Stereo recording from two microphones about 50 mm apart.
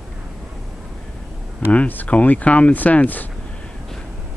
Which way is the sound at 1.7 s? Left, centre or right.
Left.